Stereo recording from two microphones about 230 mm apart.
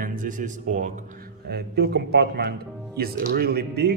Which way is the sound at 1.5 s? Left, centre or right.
Right.